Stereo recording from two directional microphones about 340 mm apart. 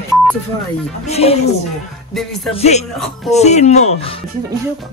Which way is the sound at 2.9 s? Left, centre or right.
Centre.